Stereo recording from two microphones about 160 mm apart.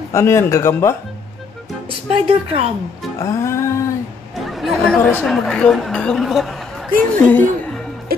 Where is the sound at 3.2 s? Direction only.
15° left (ahead or behind).